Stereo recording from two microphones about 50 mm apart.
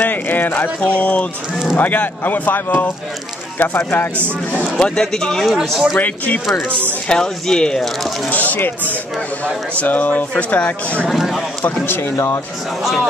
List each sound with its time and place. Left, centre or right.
0.1 s speech: left
0.7 s speech: left
4.7 s speech: centre
5.9 s speech: left
7.1 s speech: centre
8.3 s speech: left
9.8 s speech: left
11.1 s speech: centre
11.6 s speech: left